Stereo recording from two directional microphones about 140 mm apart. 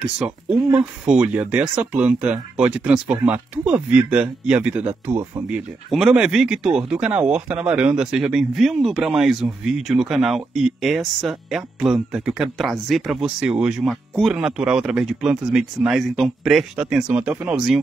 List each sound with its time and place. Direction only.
0.0 s speech: 5° right (ahead or behind)
5.9 s speech: centre (ahead or behind)